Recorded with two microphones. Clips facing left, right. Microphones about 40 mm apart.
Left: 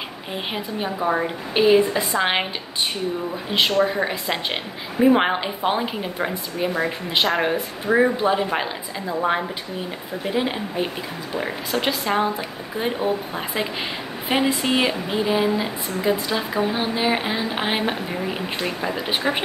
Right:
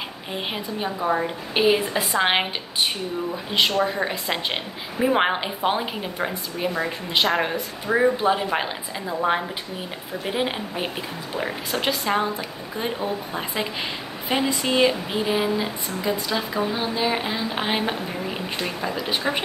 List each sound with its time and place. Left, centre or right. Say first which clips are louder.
0.3 s speech: left 1 dB; centre
1.5 s a woman's voice: left 4 dB; centre
3.8 s a woman's voice: left 2 dB; centre
10.2 s a woman's voice: left 2 dB; centre
11.3 s a woman's voice: left 2 dB; centre
14.3 s speech: left 2 dB; centre
15.0 s a woman's voice: left 2 dB; centre
18.9 s a woman's voice: left 1 dB; left